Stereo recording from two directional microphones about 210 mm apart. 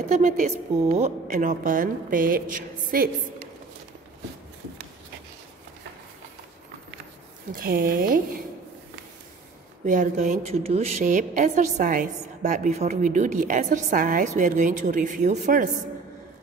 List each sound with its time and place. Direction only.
0.1 s a woman's voice: 35° right (ahead or behind)
7.5 s speech: 45° right (ahead or behind)
9.8 s a woman's voice: 35° right (ahead or behind)